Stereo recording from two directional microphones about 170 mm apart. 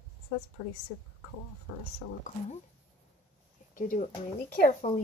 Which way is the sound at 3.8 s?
50° left (ahead or behind).